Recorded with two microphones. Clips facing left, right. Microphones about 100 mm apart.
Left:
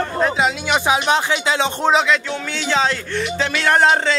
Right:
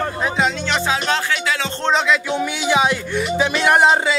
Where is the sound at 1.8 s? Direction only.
Centre (ahead or behind).